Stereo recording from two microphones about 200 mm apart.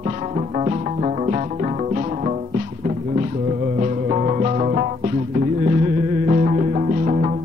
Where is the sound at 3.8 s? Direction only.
35° right (ahead or behind).